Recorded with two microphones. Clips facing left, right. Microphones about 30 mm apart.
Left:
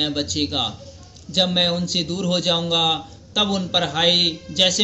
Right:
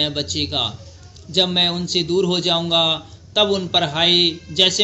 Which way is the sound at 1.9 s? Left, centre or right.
Right.